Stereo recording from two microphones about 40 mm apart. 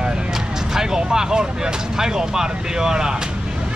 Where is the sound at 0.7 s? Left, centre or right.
Centre.